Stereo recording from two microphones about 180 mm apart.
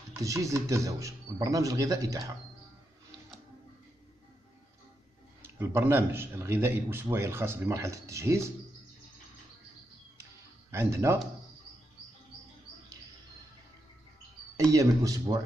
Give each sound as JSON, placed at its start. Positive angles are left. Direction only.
{"t": 0.1, "sound": "a man's voice", "side_deg": -20}
{"t": 5.4, "sound": "a man's voice", "side_deg": -15}
{"t": 10.7, "sound": "a man's voice", "side_deg": -15}
{"t": 14.6, "sound": "speech", "side_deg": -20}